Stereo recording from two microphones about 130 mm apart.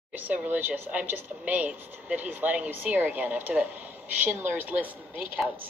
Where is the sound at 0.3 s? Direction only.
15° right (ahead or behind).